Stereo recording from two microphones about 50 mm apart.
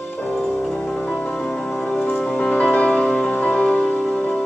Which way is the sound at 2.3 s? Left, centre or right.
Left.